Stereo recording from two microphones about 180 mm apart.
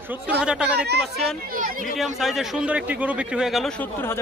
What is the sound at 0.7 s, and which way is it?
Speech, 65° right (ahead or behind).